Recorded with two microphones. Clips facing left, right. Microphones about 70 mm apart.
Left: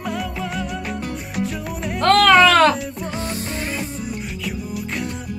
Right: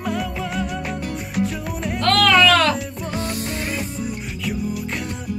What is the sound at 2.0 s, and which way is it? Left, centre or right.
Music, left.